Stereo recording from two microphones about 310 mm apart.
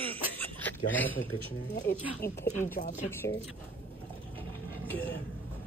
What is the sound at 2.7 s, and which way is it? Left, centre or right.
Speech, left.